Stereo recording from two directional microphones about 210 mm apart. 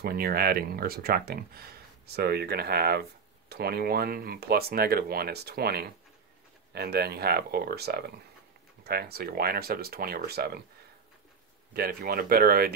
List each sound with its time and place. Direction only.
0.0 s speech: 45° right (ahead or behind)
11.7 s speech: 45° right (ahead or behind)